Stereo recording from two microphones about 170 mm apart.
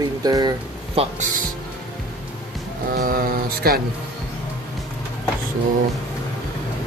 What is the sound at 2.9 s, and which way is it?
Speech, 60° right (ahead or behind).